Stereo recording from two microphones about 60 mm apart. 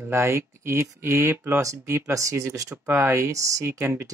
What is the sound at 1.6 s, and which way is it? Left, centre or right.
Speech, right.